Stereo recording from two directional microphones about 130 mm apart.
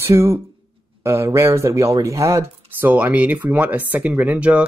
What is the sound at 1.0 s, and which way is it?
Speech, 20° right (ahead or behind).